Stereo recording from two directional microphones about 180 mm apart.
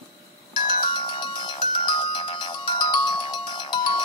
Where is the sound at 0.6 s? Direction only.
25° left (ahead or behind).